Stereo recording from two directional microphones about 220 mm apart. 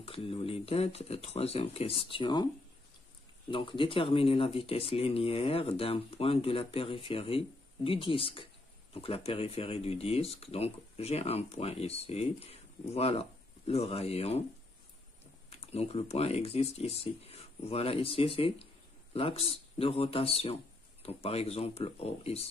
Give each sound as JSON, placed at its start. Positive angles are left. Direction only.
{"t": 0.0, "sound": "speech", "side_deg": 25}
{"t": 3.4, "sound": "speech", "side_deg": 25}
{"t": 15.5, "sound": "speech", "side_deg": 30}